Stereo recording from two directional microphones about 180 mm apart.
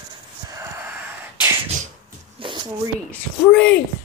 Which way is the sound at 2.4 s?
30° right (ahead or behind).